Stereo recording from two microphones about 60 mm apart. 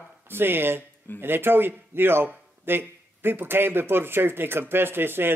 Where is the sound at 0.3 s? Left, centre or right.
Right.